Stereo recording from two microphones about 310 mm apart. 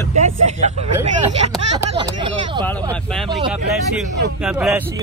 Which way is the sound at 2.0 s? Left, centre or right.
Centre.